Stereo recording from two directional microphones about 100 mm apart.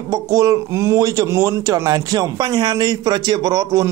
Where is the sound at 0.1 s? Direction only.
35° right (ahead or behind).